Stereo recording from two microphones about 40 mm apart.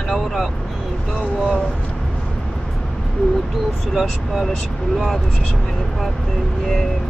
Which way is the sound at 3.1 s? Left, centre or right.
Centre.